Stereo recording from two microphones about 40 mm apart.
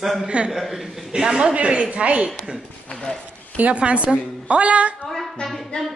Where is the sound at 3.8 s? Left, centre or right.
Right.